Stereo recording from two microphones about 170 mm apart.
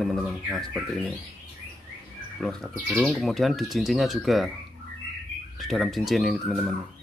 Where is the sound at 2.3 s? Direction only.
Centre (ahead or behind).